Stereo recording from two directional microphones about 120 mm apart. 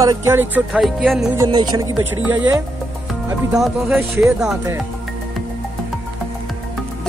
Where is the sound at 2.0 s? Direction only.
15° right (ahead or behind).